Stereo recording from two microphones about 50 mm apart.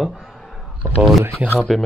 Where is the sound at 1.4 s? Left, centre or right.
Right.